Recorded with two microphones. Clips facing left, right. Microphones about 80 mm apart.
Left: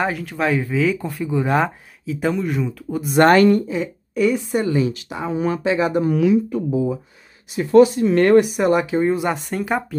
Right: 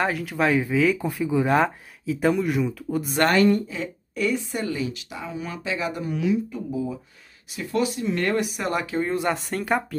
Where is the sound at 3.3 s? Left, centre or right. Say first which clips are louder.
Left 3 dB; left.